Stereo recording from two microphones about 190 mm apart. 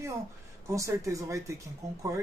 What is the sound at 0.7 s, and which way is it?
Speech, 15° right (ahead or behind).